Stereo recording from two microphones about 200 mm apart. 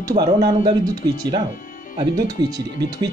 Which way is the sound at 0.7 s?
20° right (ahead or behind).